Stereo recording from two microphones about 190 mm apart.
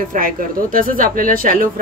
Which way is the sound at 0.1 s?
45° right (ahead or behind).